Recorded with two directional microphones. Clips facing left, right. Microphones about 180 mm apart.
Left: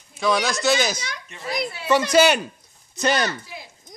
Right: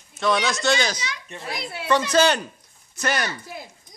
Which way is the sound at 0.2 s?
Centre (ahead or behind).